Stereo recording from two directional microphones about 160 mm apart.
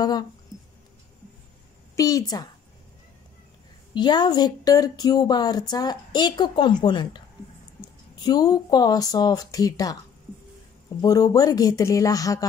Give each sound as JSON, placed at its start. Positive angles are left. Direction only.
{"t": 2.0, "sound": "speech", "side_deg": 25}
{"t": 3.9, "sound": "speech", "side_deg": 30}
{"t": 11.0, "sound": "speech", "side_deg": 25}